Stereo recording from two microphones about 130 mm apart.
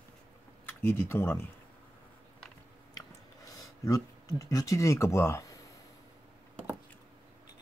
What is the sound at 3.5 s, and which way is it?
Speech, 25° left (ahead or behind).